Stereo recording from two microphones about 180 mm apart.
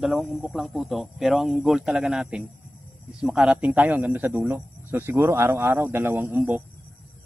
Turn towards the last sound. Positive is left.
turn(degrees=-10)  # may be behind; listen again after turning